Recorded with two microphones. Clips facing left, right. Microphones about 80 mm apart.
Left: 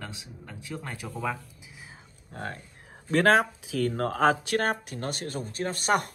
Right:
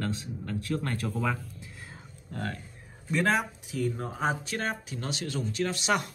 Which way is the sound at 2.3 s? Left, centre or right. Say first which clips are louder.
Right 1 dB; left.